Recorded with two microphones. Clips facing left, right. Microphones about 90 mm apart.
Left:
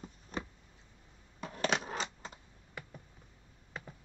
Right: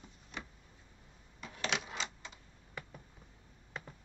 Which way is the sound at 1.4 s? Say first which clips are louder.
Left 4 dB; 45° left (ahead or behind).